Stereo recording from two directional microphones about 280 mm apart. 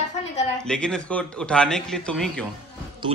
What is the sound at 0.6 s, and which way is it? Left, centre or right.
A man's voice, centre.